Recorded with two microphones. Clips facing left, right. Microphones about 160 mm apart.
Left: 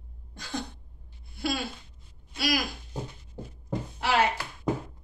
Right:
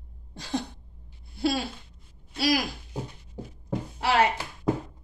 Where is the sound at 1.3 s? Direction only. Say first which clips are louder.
Right 4 dB; 30° right (ahead or behind).